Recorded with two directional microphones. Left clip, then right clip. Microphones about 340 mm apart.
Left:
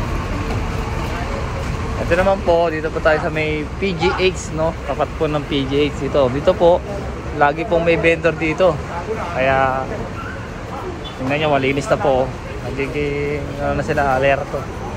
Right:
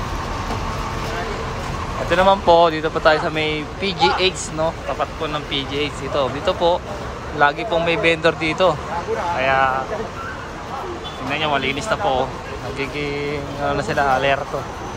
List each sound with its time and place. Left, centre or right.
2.0 s speech: centre
11.2 s speech: centre